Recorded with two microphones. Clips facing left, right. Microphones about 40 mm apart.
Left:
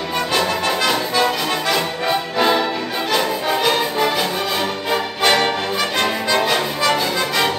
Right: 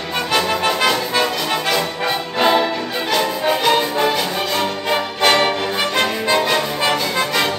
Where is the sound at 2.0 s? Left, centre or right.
Centre.